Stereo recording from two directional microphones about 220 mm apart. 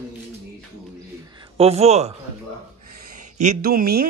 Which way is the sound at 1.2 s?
20° right (ahead or behind).